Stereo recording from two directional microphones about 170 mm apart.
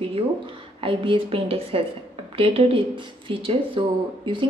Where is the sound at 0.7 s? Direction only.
30° right (ahead or behind).